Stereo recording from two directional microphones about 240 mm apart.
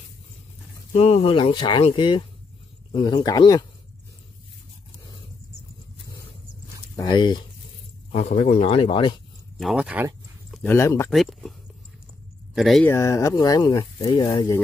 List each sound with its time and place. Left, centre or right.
0.9 s speech: left
7.0 s speech: centre
8.1 s speech: left
9.6 s a sound: centre
10.6 s speech: centre
11.1 s speech: centre
12.5 s speech: centre